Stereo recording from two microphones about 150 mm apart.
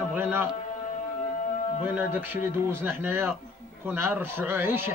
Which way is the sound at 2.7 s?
15° right (ahead or behind).